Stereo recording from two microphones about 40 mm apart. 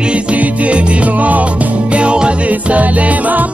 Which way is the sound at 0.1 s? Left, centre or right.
Right.